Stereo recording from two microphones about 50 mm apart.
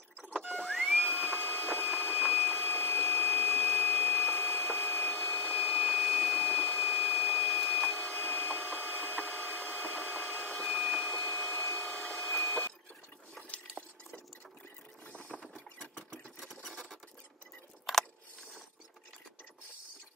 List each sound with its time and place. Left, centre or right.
0.5 s music: centre
1.0 s printer: centre
9.6 s a sound: centre
15.5 s sewing machine: centre
17.9 s keys jangling: centre